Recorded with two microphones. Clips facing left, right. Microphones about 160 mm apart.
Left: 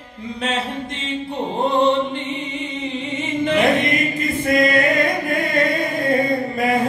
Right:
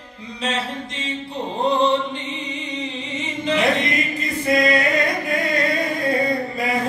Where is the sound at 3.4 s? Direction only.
55° left (ahead or behind).